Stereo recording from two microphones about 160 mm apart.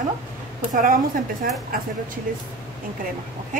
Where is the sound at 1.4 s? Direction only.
65° right (ahead or behind).